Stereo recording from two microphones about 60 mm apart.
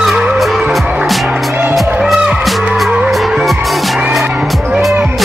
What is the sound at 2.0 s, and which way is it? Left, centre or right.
Music, centre.